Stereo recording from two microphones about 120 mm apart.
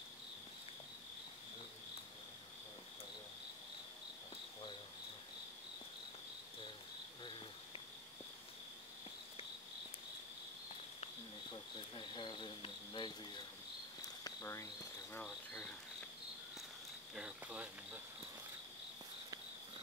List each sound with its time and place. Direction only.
11.5 s cricket: 40° left (ahead or behind)
14.2 s cricket: 25° left (ahead or behind)
15.2 s cricket: 5° left (ahead or behind)
17.1 s cricket: 5° right (ahead or behind)